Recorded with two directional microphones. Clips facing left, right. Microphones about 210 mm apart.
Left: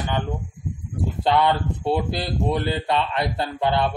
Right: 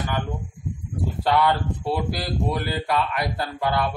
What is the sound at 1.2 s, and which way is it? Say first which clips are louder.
Speech: left 1 dB; 25° left (ahead or behind).